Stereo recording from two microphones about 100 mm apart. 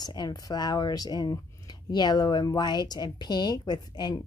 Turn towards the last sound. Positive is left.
turn(degrees=45)  # may be behind; listen again after turning